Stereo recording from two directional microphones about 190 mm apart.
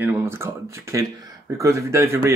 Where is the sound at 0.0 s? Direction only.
10° right (ahead or behind).